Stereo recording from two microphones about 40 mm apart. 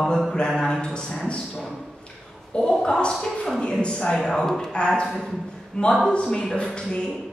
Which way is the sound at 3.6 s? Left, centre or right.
Left.